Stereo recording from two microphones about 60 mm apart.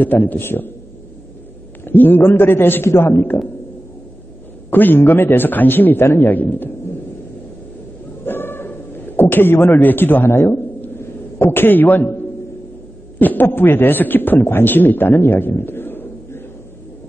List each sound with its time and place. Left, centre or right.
0.0 s a man's voice: left
1.9 s a man's voice: left
4.6 s a man's voice: left
8.3 s a sound: left
13.2 s a man's voice: left